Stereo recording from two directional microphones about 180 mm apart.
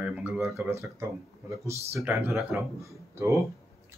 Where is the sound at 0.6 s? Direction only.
15° right (ahead or behind).